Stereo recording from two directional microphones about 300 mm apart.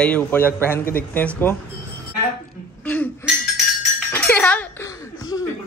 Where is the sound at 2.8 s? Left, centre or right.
Centre.